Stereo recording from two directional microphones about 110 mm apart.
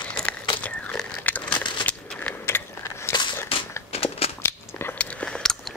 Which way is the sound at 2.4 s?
25° left (ahead or behind).